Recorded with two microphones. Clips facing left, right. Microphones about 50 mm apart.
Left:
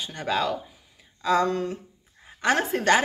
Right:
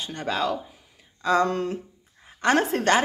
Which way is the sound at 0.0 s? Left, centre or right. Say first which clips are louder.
Even; centre.